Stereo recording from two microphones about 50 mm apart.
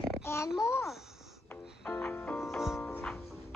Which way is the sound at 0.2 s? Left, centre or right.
Left.